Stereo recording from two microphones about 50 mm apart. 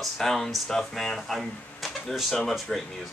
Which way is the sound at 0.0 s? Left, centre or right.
Centre.